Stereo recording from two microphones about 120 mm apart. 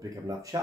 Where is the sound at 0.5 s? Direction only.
30° right (ahead or behind).